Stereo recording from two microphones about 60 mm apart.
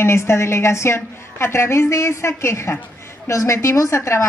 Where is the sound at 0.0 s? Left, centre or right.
Left.